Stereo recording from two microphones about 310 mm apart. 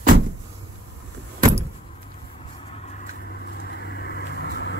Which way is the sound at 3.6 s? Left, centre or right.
Left.